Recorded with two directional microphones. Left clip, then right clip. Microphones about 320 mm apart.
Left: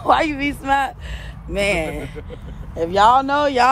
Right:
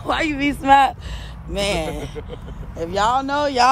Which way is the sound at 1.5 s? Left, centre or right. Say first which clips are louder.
Left 2 dB; centre.